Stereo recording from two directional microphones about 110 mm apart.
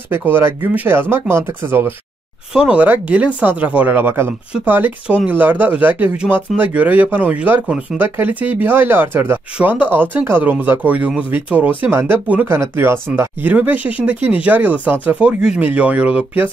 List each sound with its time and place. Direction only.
0.1 s speech: 20° right (ahead or behind)
2.5 s speech: 10° right (ahead or behind)